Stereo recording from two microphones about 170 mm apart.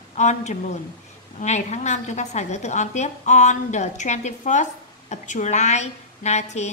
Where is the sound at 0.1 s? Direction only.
45° left (ahead or behind).